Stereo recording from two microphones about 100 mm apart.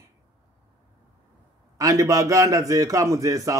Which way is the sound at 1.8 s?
35° right (ahead or behind).